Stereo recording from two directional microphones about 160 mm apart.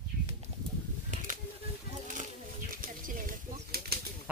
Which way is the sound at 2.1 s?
55° right (ahead or behind).